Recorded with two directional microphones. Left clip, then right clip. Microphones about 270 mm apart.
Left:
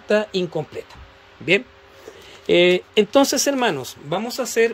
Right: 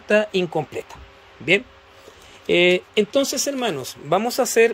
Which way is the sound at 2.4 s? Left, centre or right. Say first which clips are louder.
Left 1 dB; centre.